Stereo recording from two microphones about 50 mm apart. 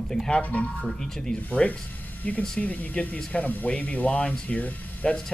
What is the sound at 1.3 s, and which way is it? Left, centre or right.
Speech, left.